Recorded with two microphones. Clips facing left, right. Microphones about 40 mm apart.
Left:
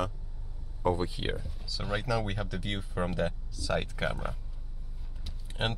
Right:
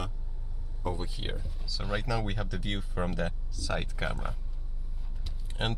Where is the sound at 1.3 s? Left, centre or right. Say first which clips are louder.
Left 2 dB; centre.